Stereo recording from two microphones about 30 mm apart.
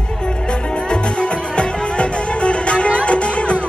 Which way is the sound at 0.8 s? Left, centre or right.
Left.